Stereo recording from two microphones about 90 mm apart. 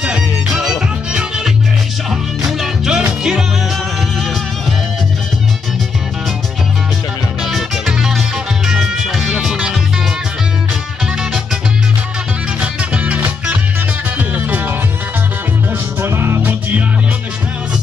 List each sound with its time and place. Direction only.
0.0 s music: 10° right (ahead or behind)
7.5 s music: 5° right (ahead or behind)
12.9 s music: 15° right (ahead or behind)
16.0 s music: 25° right (ahead or behind)